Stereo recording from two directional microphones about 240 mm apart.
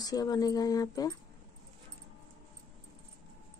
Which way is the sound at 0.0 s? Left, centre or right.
Centre.